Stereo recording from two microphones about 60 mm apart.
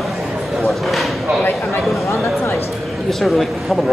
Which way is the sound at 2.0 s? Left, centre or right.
Left.